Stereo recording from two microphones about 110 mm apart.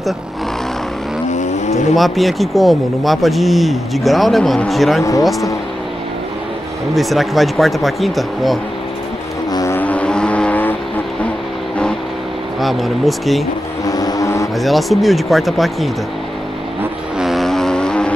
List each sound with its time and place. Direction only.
1.3 s vehicle: 90° left
2.0 s speech: centre (ahead or behind)
6.9 s speech: centre (ahead or behind)
9.5 s a sound: 35° left (ahead or behind)
9.8 s vehicle: 10° left (ahead or behind)
12.5 s speech: centre (ahead or behind)
13.8 s vehicle: 35° left (ahead or behind)
14.6 s speech: centre (ahead or behind)
17.2 s vehicle: centre (ahead or behind)